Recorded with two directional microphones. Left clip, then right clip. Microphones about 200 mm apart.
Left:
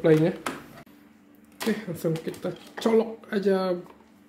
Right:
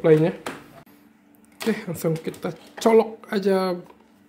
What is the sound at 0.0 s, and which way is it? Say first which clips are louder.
Speech: right 3 dB; 10° right (ahead or behind).